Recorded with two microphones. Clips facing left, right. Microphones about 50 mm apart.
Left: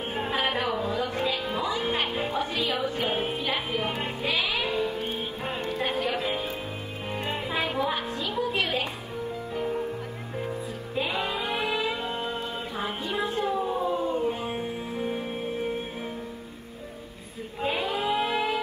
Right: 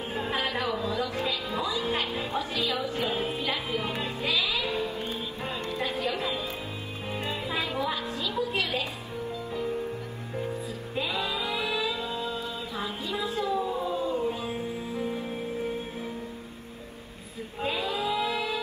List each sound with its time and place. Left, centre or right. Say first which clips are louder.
0.4 s music: left 3 dB; left
11.0 s music: left 2 dB; left
17.6 s music: left 2 dB; left